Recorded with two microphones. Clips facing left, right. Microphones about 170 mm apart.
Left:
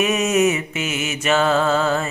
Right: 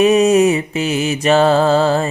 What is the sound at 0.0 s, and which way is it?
Mantra, 35° right (ahead or behind).